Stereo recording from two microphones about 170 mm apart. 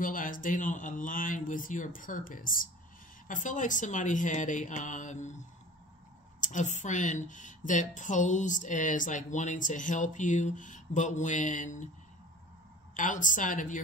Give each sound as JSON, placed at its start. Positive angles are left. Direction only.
{"t": 0.0, "sound": "a woman's voice", "side_deg": 50}
{"t": 6.4, "sound": "a woman's voice", "side_deg": 45}
{"t": 12.9, "sound": "a woman's voice", "side_deg": 50}